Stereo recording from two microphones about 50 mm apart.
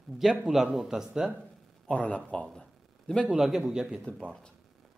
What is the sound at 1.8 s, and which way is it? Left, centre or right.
Speech, left.